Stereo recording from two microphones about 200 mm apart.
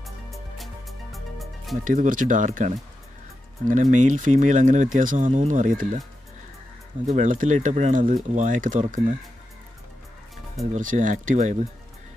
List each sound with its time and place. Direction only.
0.0 s music: centre (ahead or behind)
1.9 s speech: 40° right (ahead or behind)
7.1 s speech: 40° right (ahead or behind)
10.6 s speech: 40° right (ahead or behind)